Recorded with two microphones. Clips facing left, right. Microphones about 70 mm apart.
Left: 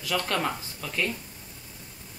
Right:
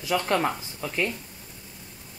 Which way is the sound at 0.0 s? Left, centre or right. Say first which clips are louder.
Right 4 dB; centre.